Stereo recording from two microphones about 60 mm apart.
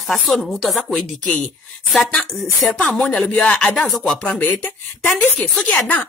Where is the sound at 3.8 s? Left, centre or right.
Centre.